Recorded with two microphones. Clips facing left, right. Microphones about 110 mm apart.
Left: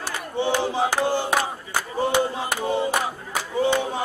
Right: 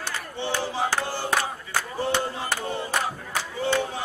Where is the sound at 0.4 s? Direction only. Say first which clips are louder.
Left 5 dB; 15° left (ahead or behind).